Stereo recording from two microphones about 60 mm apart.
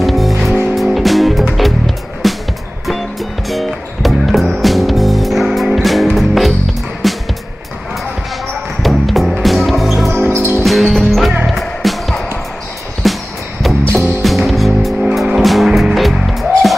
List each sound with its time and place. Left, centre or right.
0.0 s music: centre
8.8 s music: centre
10.3 s music: right
10.6 s music: centre
14.2 s vehicle: centre
15.4 s music: centre